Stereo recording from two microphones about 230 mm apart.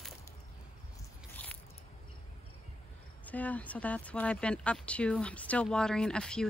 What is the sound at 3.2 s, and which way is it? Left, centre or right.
Speech, centre.